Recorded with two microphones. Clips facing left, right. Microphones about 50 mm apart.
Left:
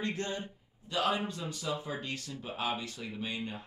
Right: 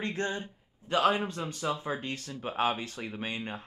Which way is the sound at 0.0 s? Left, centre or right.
Right.